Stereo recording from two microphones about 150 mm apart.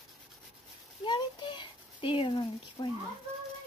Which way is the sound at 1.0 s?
30° left (ahead or behind).